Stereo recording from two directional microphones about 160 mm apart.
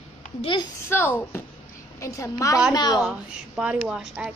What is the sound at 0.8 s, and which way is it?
Speech, 10° left (ahead or behind).